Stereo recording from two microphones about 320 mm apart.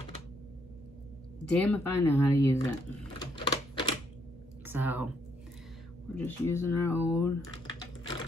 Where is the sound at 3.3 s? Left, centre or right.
Centre.